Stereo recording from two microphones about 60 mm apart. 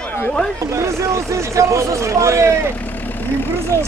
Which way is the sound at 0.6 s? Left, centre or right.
Right.